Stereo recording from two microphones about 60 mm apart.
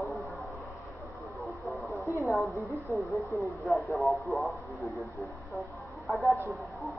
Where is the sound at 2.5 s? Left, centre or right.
Left.